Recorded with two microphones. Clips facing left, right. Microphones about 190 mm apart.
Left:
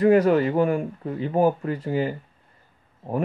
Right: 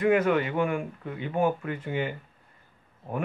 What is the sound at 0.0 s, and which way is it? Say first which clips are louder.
Speech: left 6 dB; 35° left (ahead or behind).